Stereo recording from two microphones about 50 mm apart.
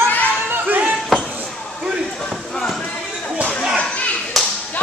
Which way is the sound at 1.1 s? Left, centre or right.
Centre.